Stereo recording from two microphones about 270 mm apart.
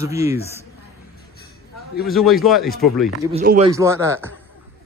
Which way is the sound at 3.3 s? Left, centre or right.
Right.